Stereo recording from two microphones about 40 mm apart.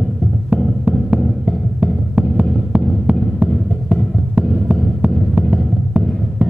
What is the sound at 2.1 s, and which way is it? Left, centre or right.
Heart sounds, right.